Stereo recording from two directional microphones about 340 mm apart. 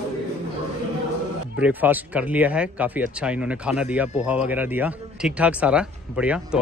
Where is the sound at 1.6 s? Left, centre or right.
Centre.